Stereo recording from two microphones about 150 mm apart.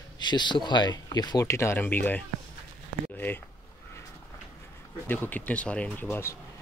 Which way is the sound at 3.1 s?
10° left (ahead or behind).